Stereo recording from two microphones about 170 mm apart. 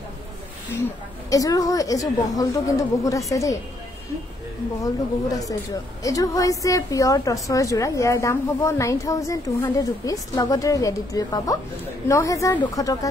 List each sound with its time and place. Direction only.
0.7 s a woman's voice: 15° left (ahead or behind)
6.0 s a woman's voice: 20° left (ahead or behind)